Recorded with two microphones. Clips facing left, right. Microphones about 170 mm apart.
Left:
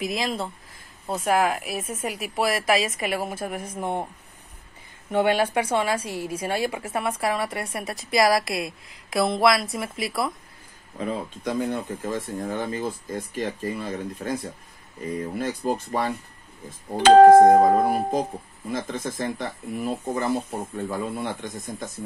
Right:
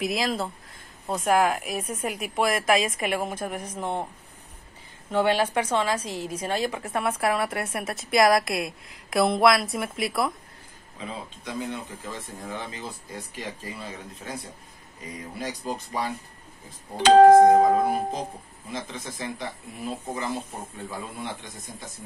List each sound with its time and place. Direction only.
0.0 s a woman's voice: centre (ahead or behind)
5.4 s a woman's voice: 10° left (ahead or behind)
11.0 s speech: 50° left (ahead or behind)